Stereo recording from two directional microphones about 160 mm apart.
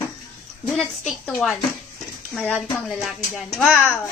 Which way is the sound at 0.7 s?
5° left (ahead or behind).